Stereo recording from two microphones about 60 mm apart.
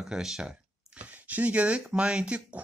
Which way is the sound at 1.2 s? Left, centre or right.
Right.